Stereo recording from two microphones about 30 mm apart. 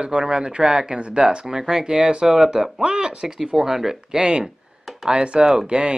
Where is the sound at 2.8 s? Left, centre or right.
Right.